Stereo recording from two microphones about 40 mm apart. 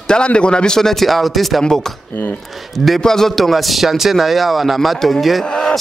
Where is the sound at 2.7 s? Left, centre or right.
Centre.